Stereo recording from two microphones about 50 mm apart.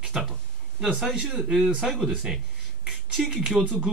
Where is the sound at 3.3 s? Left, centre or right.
Centre.